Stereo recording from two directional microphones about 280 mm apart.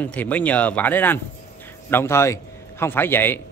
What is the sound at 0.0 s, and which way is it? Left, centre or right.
A man's voice, centre.